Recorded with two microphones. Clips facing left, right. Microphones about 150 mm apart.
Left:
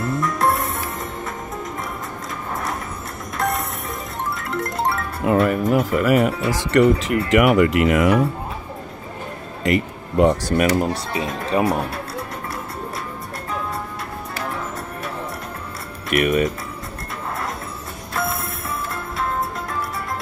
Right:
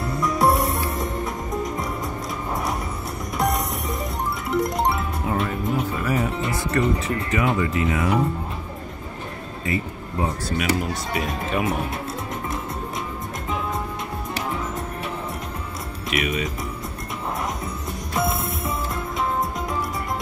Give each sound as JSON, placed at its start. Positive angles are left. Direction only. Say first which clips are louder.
{"t": 0.4, "sound": "music", "louder": "right 5 dB", "side_deg": 0}
{"t": 4.4, "sound": "music", "louder": "right 4 dB", "side_deg": -20}
{"t": 5.2, "sound": "speech", "louder": "left 10 dB", "side_deg": 75}
{"t": 9.7, "sound": "speech", "louder": "left 7 dB", "side_deg": 75}
{"t": 10.9, "sound": "speech", "louder": "left 2 dB", "side_deg": 30}
{"t": 16.1, "sound": "speech", "louder": "left 7 dB", "side_deg": 55}
{"t": 18.1, "sound": "music", "louder": "right 1 dB", "side_deg": -20}